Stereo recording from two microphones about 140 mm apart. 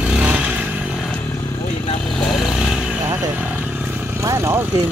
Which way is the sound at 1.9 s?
5° left (ahead or behind).